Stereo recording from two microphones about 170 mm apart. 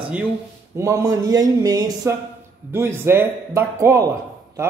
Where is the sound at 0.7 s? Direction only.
20° right (ahead or behind).